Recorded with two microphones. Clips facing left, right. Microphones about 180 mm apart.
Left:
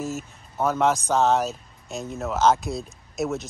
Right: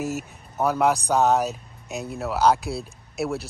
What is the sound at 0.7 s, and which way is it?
Speech, 10° right (ahead or behind).